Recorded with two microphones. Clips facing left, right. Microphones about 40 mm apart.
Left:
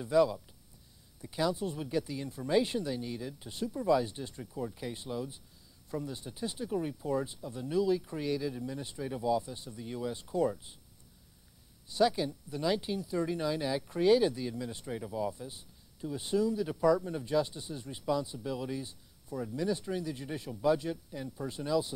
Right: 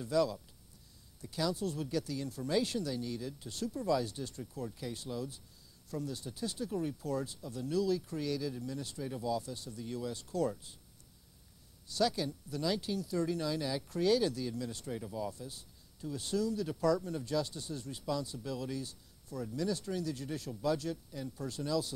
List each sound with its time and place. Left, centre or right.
0.0 s speech: left
11.9 s speech: centre